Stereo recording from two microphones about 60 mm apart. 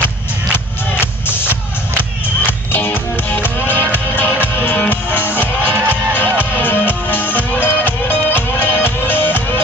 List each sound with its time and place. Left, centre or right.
1.2 s music: left
2.7 s music: left